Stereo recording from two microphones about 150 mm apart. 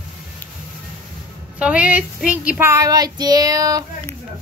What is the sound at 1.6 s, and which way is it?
Child singing, 10° right (ahead or behind).